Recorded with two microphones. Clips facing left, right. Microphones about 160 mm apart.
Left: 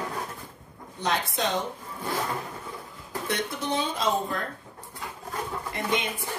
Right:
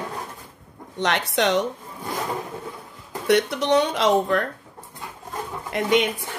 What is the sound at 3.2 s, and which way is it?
A woman's voice, 75° right (ahead or behind).